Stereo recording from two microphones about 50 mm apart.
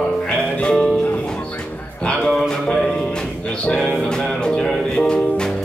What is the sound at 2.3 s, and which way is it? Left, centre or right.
Music, centre.